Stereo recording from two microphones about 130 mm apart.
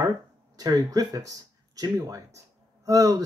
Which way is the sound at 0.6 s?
30° right (ahead or behind).